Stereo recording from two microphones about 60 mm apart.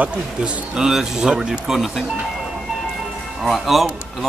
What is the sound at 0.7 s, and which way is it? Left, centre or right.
Speech, centre.